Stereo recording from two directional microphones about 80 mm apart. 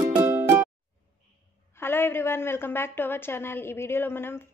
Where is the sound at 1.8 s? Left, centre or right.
Left.